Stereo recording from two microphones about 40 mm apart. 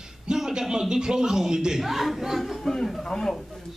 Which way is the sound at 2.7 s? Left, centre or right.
Centre.